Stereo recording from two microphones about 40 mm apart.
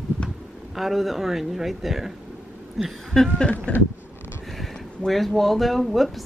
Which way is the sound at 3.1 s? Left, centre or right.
Centre.